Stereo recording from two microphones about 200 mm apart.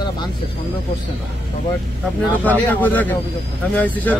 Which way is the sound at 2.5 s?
10° left (ahead or behind).